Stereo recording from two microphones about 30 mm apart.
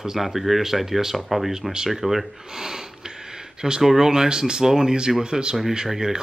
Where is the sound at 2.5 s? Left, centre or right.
Centre.